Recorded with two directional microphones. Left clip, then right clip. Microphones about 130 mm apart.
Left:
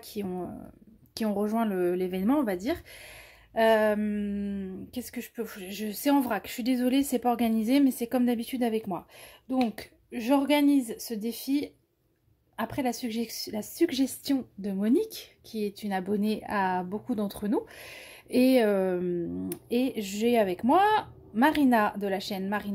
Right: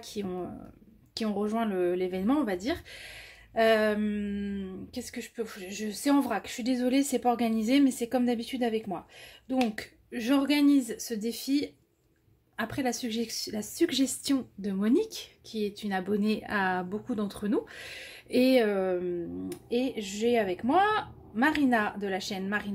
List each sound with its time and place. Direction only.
0.0 s a woman's voice: 30° left (ahead or behind)
9.5 s a woman's voice: 20° left (ahead or behind)